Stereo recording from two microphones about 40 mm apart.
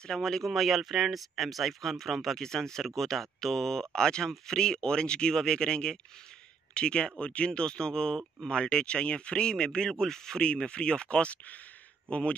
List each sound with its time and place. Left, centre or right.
0.0 s speech: centre
0.5 s speech: centre; by 12.4 s left